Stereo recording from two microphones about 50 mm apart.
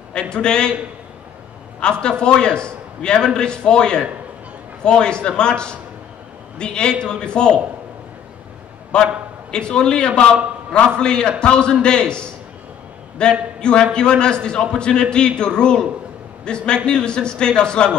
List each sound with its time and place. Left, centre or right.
0.1 s a man's voice: centre
1.8 s a man's voice: centre
9.5 s a man's voice: centre